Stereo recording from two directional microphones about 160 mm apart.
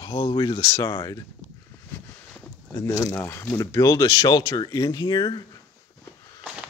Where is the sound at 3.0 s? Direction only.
15° left (ahead or behind).